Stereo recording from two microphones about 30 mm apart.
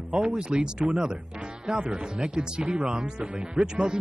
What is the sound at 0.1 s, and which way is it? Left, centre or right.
Speech, right.